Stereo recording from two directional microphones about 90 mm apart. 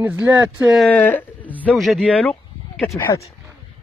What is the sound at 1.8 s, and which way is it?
Speech, centre (ahead or behind).